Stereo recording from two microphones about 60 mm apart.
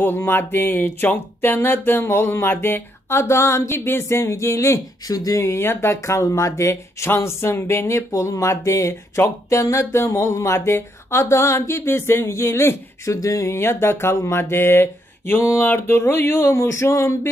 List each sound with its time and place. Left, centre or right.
0.0 s music: left
5.0 s speech: left
5.5 s a sound: left
6.2 s speech: left
7.1 s a sound: left
14.4 s mantra: left
15.6 s music: left
16.5 s speech: left